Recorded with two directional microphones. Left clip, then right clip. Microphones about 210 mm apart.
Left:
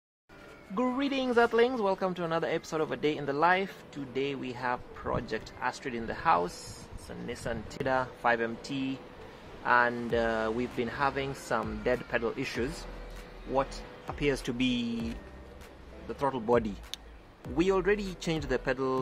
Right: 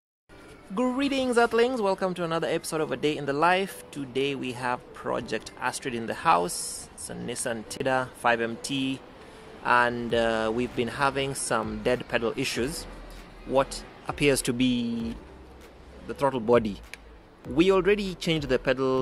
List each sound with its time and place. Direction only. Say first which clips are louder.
0.7 s speech: right 4 dB; 15° right (ahead or behind)
16.1 s speech: right 5 dB; 15° right (ahead or behind)